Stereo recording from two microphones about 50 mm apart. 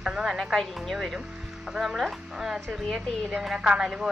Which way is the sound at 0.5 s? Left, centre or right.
Centre.